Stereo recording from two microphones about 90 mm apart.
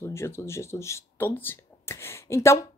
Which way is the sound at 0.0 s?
30° left (ahead or behind).